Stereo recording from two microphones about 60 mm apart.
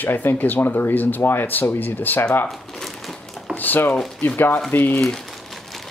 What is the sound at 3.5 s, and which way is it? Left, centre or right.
Speech, left.